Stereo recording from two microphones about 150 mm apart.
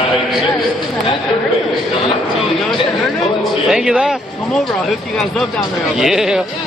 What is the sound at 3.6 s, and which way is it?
Speech, 5° right (ahead or behind).